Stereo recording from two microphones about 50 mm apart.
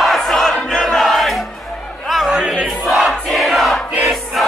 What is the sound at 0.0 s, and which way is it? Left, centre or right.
Crowd, centre.